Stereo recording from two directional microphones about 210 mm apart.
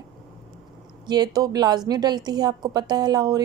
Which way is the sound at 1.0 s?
20° right (ahead or behind).